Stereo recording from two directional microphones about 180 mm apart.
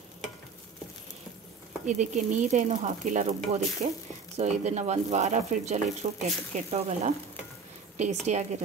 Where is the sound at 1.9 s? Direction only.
40° right (ahead or behind).